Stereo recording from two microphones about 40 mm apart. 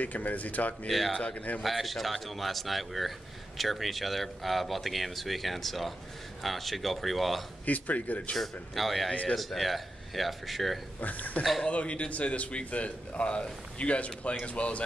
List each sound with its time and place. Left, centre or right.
0.0 s speech: left
0.8 s speech: centre
7.6 s a man's voice: left
8.4 s speech: centre
11.0 s speech: left
11.7 s a man's voice: left